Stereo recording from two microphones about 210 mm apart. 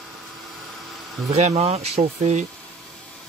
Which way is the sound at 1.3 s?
30° right (ahead or behind).